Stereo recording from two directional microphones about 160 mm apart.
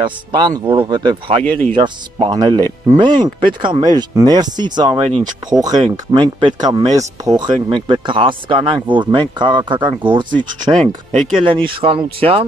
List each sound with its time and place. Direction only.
0.0 s speech: 30° right (ahead or behind)
1.4 s speech: 10° left (ahead or behind)
1.7 s speech: 30° right (ahead or behind)